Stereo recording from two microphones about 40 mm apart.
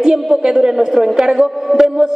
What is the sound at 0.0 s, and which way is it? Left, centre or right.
A woman's voice, centre.